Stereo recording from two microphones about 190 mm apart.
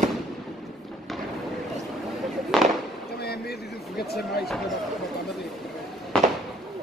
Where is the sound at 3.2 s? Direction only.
55° left (ahead or behind).